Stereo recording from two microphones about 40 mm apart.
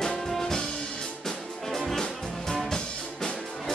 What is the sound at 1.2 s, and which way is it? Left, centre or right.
Music, centre.